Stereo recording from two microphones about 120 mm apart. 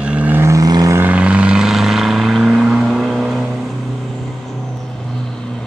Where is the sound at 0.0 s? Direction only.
10° right (ahead or behind); by 0.9 s 30° right (ahead or behind).